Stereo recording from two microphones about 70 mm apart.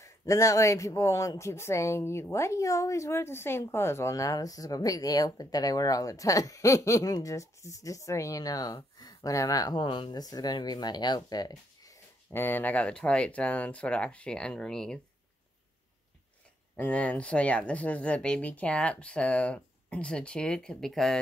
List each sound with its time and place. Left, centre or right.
0.0 s speech: left
4.1 s speech: left
12.3 s speech: left; by 15.0 s centre
16.7 s speech: left; by 21.2 s centre